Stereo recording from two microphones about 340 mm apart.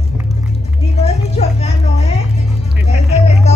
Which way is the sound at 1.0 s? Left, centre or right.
Centre.